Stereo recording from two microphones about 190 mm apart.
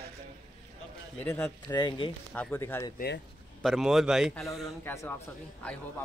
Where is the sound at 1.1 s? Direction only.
5° left (ahead or behind).